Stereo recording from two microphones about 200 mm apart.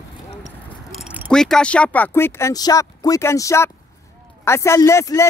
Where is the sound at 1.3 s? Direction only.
5° left (ahead or behind).